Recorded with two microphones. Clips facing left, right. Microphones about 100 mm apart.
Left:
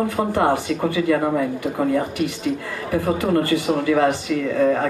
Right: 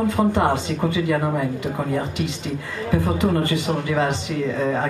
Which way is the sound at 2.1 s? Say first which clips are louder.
Left 4 dB; 20° right (ahead or behind).